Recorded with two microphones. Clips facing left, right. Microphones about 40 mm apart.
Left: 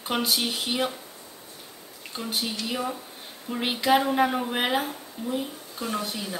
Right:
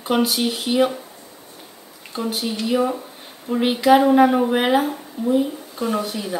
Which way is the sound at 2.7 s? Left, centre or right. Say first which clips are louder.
Right 10 dB; centre.